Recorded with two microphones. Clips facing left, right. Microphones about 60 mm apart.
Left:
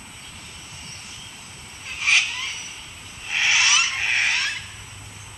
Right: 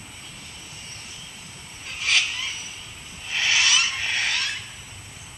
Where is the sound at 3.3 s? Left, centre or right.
Left.